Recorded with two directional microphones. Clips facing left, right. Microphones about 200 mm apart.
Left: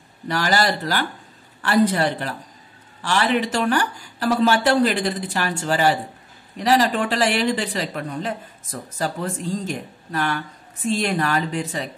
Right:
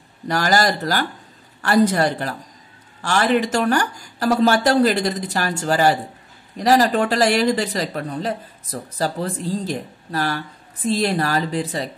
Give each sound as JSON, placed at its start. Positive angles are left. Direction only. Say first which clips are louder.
{"t": 0.3, "sound": "speech", "louder": "right 2 dB", "side_deg": -45}